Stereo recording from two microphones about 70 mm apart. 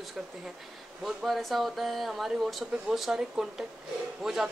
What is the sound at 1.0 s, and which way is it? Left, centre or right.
A man's voice, centre.